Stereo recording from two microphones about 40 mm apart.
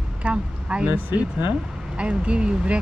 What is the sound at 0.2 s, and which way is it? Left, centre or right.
Speech, right.